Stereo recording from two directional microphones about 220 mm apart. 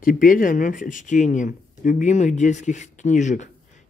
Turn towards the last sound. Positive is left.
turn(degrees=35)  # may be behind; listen again after turning